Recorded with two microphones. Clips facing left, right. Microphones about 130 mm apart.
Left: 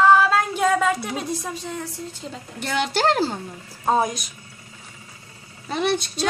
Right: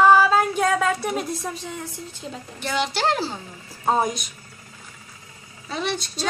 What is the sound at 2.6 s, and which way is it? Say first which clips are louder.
Speech: left 2 dB; 50° left (ahead or behind).